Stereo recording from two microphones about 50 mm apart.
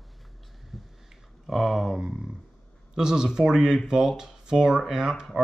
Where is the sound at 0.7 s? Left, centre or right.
Centre.